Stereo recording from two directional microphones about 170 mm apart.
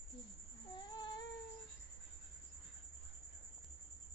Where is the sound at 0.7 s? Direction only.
25° left (ahead or behind).